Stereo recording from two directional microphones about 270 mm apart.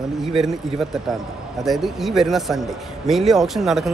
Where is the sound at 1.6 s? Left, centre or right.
Centre.